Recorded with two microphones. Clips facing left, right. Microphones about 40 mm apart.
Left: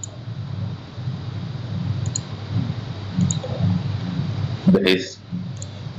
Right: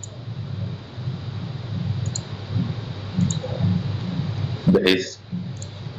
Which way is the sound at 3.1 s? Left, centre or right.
Left.